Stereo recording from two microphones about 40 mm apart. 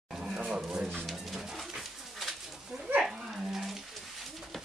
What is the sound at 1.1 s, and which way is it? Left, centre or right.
Pigeon, centre.